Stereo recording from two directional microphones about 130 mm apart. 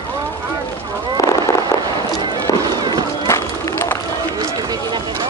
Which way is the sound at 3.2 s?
20° left (ahead or behind).